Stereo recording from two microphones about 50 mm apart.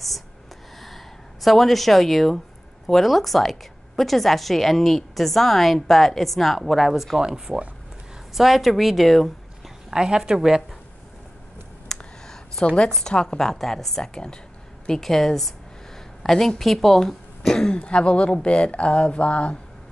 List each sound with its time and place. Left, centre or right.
0.7 s a sound: centre
2.9 s a woman's voice: centre
7.2 s a woman's voice: centre
8.4 s a woman's voice: centre
9.8 s a woman's voice: centre
11.9 s a sound: centre
12.9 s a woman's voice: centre